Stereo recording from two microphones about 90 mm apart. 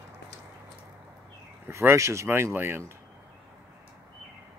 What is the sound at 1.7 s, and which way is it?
Speech, 35° right (ahead or behind).